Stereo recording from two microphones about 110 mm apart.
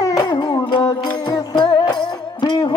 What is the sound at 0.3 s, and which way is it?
Music, 40° left (ahead or behind).